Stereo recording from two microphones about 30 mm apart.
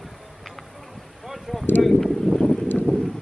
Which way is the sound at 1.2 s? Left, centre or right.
Centre.